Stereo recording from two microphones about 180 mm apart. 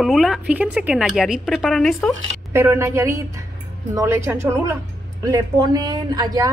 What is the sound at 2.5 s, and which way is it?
A woman's voice, 15° right (ahead or behind).